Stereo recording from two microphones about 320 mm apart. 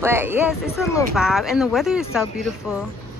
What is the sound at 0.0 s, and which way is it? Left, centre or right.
Speech, centre.